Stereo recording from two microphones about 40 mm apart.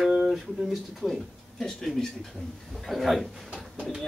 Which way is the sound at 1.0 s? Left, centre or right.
Centre.